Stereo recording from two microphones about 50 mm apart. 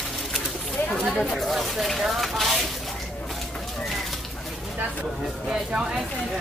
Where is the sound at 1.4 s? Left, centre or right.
Centre.